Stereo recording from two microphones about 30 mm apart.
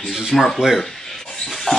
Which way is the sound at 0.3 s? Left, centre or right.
Centre.